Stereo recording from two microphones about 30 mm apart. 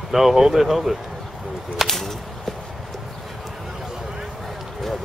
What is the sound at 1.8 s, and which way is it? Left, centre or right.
Whip, centre.